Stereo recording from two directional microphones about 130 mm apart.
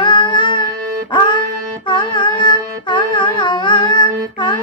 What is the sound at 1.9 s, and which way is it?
Carnatic music, 35° left (ahead or behind).